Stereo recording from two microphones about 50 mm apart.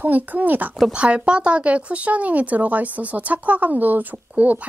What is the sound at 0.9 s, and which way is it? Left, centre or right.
A woman's voice, right.